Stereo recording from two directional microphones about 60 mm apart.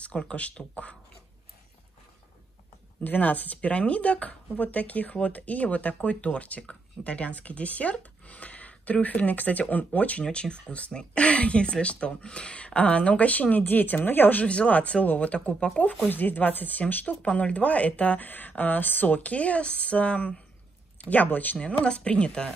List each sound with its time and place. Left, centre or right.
0.0 s speech: centre
3.0 s speech: left
14.4 s speech: centre
16.1 s speech: left
21.5 s speech: centre